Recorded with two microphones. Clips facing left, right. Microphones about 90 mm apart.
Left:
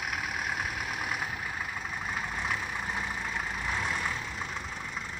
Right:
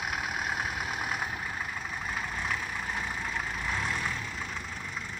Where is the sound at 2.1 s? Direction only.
10° left (ahead or behind).